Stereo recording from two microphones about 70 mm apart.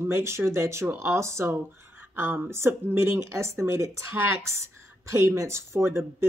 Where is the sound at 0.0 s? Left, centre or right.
Right.